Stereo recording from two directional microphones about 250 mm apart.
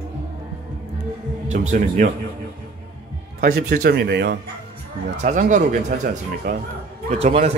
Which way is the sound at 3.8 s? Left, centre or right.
Right.